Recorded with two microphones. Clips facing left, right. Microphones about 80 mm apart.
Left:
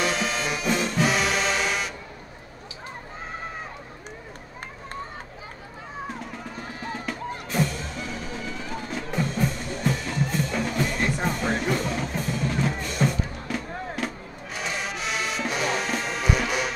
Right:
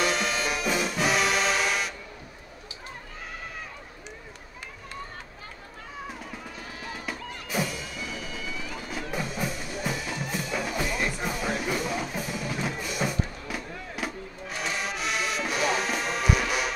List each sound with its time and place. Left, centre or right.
0.0 s brass instrument: centre
7.4 s music: centre
8.1 s music: left
8.8 s music: centre